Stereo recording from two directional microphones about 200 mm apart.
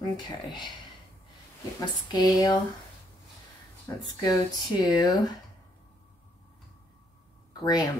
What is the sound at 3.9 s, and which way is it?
Speech, 15° left (ahead or behind).